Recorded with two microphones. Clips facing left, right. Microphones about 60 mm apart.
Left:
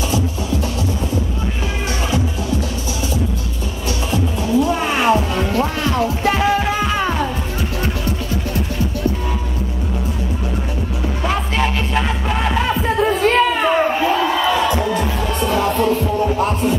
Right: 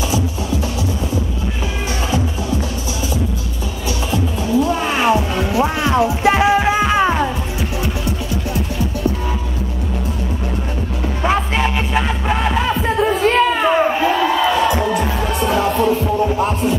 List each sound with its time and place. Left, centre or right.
4.1 s music: centre
11.2 s music: centre